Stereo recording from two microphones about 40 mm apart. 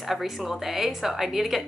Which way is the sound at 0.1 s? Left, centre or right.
Centre.